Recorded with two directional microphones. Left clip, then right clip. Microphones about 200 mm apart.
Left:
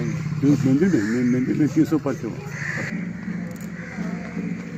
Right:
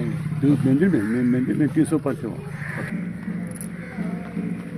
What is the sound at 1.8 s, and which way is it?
Speech, 20° right (ahead or behind).